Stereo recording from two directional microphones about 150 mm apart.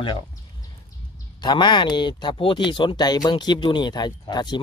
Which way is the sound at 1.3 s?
30° left (ahead or behind).